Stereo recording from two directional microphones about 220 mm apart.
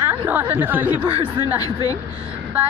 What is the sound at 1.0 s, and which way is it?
Speech, 20° right (ahead or behind).